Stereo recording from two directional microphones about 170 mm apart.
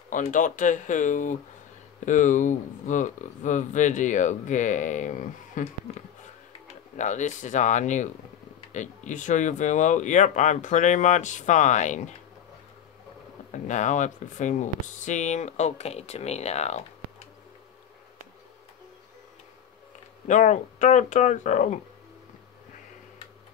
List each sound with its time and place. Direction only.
0.1 s speech: 50° left (ahead or behind)
7.0 s speech: 45° left (ahead or behind)
13.5 s speech: 45° left (ahead or behind)
20.2 s speech: 45° left (ahead or behind)